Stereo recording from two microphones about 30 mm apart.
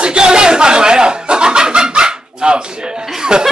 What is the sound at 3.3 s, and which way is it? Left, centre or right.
Speech, right.